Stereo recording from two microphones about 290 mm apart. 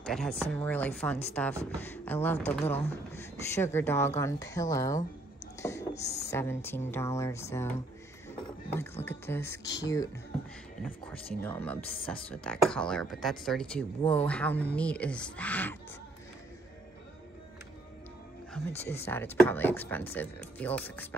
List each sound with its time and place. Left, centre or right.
0.0 s speech: centre
5.6 s a sound: centre
6.2 s speech: centre
9.6 s speech: left
11.4 s speech: centre
18.9 s speech: centre